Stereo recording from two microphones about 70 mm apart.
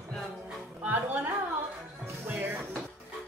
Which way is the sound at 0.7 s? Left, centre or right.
Right.